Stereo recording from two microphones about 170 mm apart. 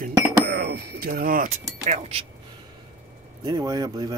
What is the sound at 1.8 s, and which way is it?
Speech, 40° right (ahead or behind).